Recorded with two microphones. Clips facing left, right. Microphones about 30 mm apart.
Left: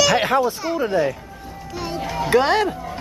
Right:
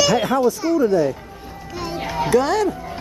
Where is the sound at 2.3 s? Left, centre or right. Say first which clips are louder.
Left 1 dB; left.